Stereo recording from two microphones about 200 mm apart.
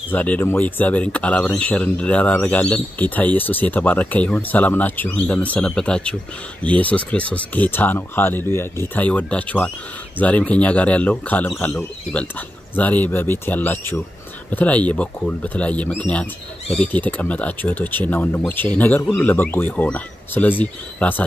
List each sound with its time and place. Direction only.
0.1 s speech: 10° left (ahead or behind)